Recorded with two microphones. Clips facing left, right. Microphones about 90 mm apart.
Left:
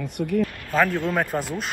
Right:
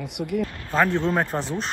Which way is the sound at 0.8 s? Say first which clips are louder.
Right 1 dB; 25° right (ahead or behind).